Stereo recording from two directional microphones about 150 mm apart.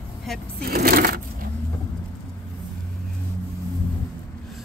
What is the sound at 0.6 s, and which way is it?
Speech, 85° right.